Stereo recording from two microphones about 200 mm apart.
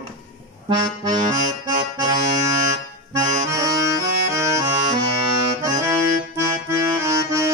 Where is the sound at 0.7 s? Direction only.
20° right (ahead or behind).